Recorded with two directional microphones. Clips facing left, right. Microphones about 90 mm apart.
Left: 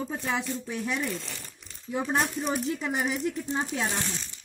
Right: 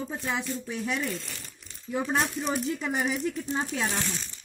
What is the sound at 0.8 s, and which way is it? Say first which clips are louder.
Speech: even; 20° left (ahead or behind).